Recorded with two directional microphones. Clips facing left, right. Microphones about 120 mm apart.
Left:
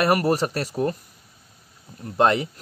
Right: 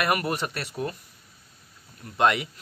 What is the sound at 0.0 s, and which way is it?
Speech, 35° left (ahead or behind).